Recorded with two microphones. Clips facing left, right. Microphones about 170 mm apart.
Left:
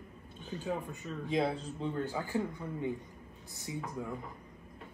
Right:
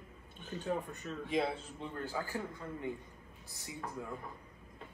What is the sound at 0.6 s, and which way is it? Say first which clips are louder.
Speech: even; centre (ahead or behind).